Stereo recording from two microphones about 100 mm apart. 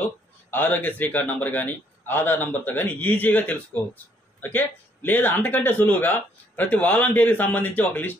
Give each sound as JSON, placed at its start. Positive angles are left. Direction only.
{"t": 0.5, "sound": "speech", "side_deg": 20}